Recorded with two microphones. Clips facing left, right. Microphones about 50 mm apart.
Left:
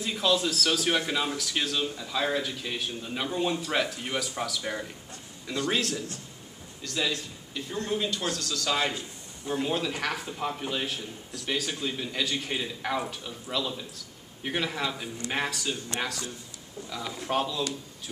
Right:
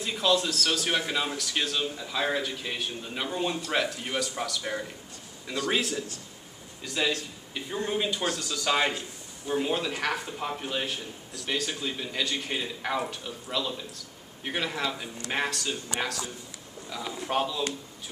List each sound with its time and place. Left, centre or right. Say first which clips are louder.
0.0 s a man's voice: even; centre
9.5 s a man's voice: right 1 dB; centre